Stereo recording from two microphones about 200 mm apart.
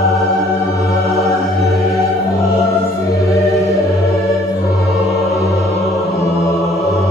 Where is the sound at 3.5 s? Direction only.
15° left (ahead or behind).